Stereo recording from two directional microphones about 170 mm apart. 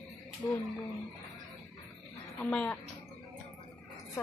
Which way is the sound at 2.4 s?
5° left (ahead or behind).